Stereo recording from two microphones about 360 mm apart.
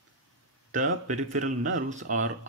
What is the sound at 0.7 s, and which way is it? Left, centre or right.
Speech, right.